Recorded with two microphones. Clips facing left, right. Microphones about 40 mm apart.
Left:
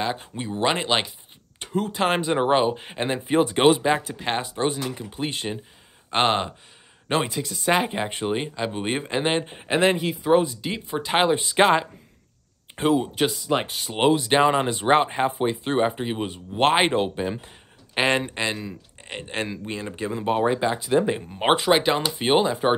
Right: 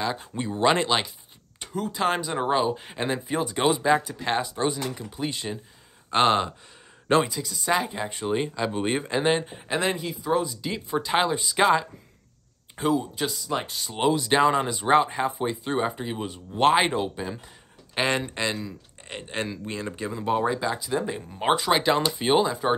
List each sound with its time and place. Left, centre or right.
0.0 s speech: left
0.3 s speech: centre
1.6 s speech: left
3.3 s speech: left
3.9 s speech: left
5.1 s speech: left
6.0 s speech: centre
7.2 s speech: left
8.3 s speech: centre
21.6 s speech: centre